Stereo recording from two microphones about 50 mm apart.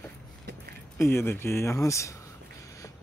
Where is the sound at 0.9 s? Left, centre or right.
Left.